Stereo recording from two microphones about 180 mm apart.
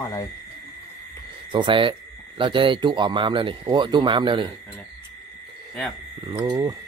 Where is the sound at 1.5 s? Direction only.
25° right (ahead or behind).